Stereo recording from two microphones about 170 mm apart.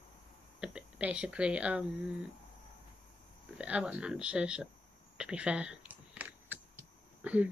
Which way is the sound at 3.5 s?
5° right (ahead or behind).